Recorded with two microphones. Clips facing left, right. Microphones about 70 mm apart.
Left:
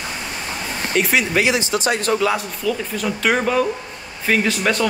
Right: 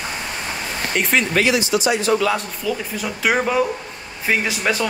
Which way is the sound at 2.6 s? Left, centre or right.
Centre.